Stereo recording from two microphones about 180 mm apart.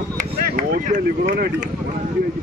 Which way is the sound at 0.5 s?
45° right (ahead or behind).